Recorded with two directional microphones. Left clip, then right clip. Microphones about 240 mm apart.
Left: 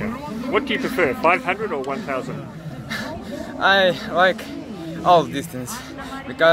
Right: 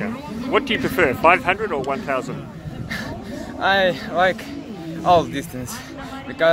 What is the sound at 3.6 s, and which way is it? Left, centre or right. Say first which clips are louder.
Speech: left 2 dB; centre.